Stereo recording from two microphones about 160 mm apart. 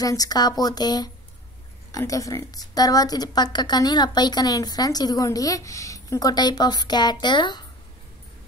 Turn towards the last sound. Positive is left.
turn(degrees=30)  # may be behind; listen again after turning